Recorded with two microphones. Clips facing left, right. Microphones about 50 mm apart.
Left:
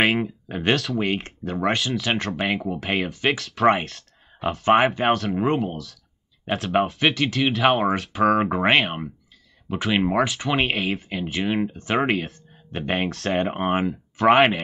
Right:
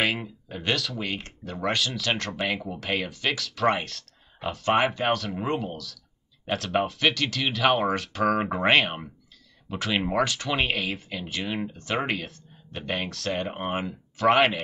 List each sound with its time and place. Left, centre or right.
0.0 s a sound: left
0.9 s speech: left
1.4 s speech: centre
3.6 s speech: centre
4.6 s speech: left
5.1 s speech: centre; by 13.8 s left